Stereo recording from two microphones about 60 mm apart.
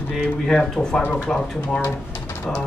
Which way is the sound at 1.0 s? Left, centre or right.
Left.